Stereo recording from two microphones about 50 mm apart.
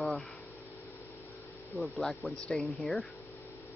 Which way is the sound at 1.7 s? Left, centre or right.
Centre.